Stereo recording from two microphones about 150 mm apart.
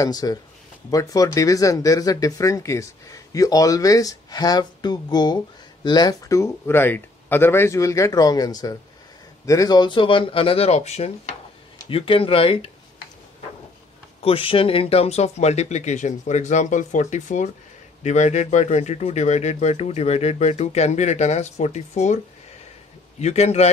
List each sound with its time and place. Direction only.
0.0 s speech: 25° left (ahead or behind); by 11.3 s 45° left (ahead or behind)
11.9 s speech: 35° left (ahead or behind)
14.2 s speech: 35° left (ahead or behind)